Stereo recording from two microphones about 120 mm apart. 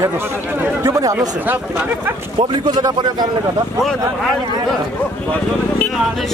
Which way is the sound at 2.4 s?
35° right (ahead or behind).